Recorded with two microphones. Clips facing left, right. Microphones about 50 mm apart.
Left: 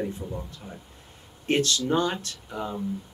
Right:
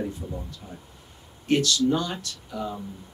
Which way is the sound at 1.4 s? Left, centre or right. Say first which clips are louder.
Right 2 dB; left.